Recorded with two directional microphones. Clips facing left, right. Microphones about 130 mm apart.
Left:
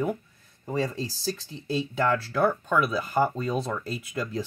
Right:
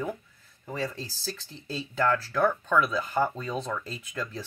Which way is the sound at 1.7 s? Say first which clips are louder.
Left 2 dB; 10° left (ahead or behind).